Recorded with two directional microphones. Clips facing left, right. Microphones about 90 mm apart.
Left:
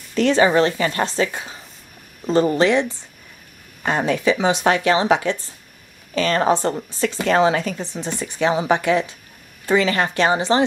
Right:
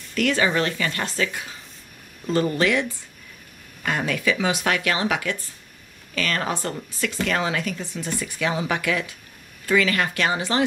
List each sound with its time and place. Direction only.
0.1 s speech: 30° left (ahead or behind)